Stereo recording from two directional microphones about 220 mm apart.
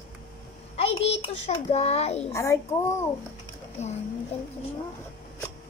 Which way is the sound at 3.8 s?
30° left (ahead or behind).